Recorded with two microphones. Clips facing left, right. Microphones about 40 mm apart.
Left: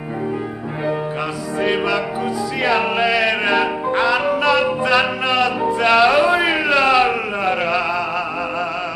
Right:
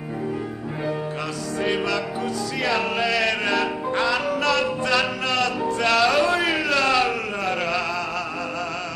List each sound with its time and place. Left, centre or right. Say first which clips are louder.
1.6 s music: left 5 dB; centre